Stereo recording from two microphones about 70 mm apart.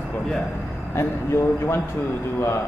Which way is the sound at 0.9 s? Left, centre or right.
Left.